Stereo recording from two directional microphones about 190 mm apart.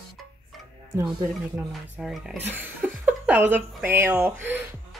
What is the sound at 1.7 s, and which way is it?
Speech, centre (ahead or behind).